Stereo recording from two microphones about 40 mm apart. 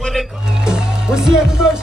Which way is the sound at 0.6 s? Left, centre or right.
Centre.